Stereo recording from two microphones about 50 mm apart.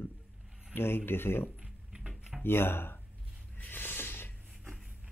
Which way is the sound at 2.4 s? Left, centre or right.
Left.